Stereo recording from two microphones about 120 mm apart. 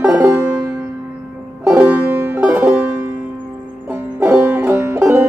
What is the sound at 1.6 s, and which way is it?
Music, 10° right (ahead or behind).